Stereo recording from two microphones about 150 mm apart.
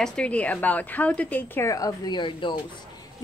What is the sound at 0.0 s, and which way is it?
A woman's voice, 5° left (ahead or behind).